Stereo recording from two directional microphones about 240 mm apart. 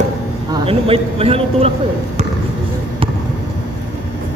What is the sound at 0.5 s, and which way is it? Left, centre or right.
A man's voice, right.